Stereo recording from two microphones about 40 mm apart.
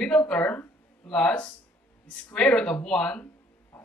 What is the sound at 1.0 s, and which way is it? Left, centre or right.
Speech, left.